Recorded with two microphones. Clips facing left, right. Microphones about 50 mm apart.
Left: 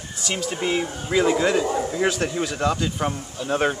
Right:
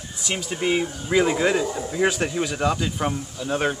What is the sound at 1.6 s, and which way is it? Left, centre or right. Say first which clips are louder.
Speech: left 4 dB; left.